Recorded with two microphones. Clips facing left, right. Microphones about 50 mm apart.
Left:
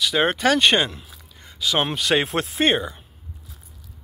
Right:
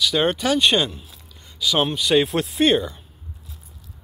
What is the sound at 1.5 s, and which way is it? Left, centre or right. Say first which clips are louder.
Speech: right 1 dB; left.